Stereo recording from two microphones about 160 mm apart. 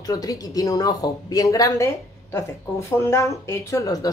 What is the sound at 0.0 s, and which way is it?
Speech, 25° left (ahead or behind).